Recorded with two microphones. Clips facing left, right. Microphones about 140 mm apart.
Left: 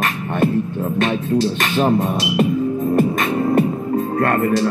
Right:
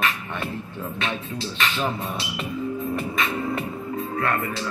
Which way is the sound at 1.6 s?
45° left (ahead or behind).